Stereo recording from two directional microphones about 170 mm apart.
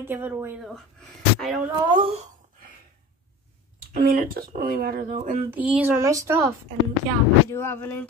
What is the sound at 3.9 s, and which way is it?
Speech, 55° right (ahead or behind).